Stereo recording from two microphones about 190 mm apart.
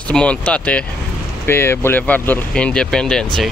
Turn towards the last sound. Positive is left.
turn(degrees=5)  # may be behind; listen again after turning